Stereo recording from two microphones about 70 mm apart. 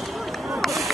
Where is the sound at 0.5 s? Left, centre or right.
Centre.